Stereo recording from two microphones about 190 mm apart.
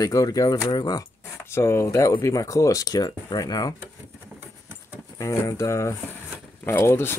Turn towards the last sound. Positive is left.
turn(degrees=10)  # may be behind; listen again after turning